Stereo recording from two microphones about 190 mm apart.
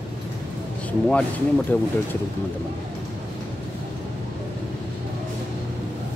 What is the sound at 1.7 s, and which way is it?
Speech, 10° left (ahead or behind).